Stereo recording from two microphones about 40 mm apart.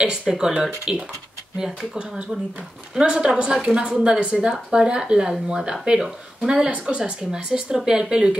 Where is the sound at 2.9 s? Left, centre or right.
Right.